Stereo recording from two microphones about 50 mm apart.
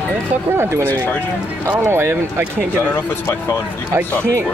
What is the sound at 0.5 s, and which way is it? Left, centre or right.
Speech, right.